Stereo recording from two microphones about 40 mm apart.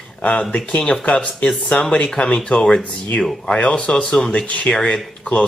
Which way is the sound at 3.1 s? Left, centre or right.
Left.